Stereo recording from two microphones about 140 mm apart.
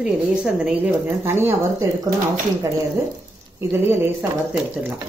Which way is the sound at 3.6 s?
15° right (ahead or behind).